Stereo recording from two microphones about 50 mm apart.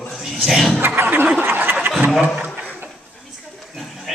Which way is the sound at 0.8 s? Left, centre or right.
Right.